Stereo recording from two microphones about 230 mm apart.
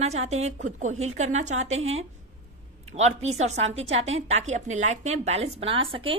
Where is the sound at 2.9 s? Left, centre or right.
Right.